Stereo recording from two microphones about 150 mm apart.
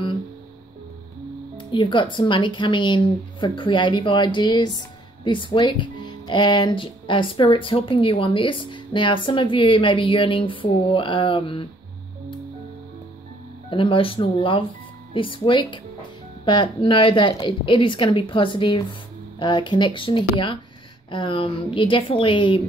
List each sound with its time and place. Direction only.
1.6 s speech: 35° left (ahead or behind)
13.7 s speech: 35° left (ahead or behind)